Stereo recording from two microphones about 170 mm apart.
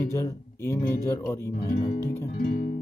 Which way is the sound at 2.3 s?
50° left (ahead or behind).